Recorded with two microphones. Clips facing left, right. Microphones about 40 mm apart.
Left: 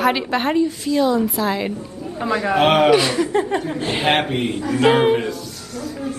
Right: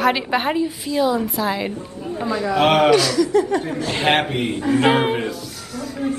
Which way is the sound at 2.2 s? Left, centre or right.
Left.